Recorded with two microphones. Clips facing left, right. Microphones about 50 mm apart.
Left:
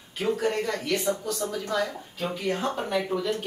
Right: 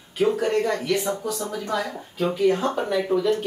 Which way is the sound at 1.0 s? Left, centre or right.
Centre.